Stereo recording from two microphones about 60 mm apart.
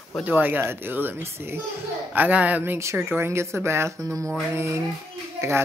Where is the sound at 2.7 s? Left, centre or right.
Right.